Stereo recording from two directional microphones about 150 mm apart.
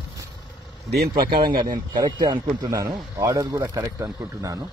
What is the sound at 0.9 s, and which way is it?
Speech, 90° right.